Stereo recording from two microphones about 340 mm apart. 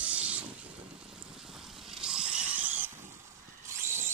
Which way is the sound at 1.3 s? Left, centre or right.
Centre.